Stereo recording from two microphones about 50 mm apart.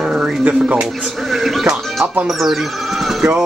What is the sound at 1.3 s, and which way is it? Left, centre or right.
Speech, centre.